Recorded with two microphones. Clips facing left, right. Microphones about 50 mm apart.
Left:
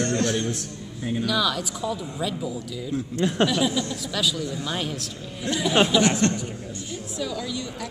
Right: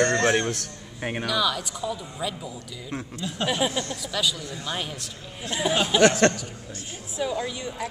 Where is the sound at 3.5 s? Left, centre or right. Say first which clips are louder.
Left 2 dB; right.